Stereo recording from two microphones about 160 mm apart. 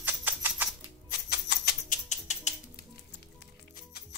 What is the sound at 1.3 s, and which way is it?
Typewriter, 85° left.